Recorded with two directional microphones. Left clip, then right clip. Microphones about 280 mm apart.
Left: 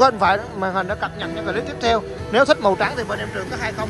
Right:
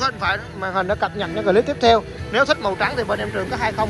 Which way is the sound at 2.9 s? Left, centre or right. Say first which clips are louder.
Right 3 dB; centre.